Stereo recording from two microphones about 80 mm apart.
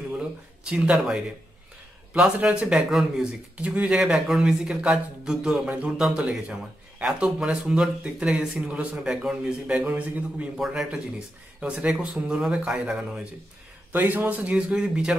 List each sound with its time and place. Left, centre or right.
0.2 s a man's voice: centre
14.5 s speech: centre